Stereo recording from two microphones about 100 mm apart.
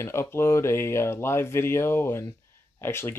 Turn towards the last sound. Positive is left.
turn(degrees=25)  # may be behind; listen again after turning